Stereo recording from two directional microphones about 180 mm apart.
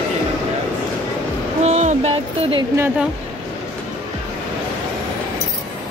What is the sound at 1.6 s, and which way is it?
Music, 40° right (ahead or behind).